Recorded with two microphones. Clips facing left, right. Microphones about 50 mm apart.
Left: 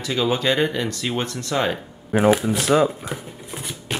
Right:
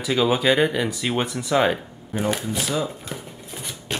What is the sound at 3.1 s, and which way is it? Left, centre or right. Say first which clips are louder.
Speech: left 3 dB; centre.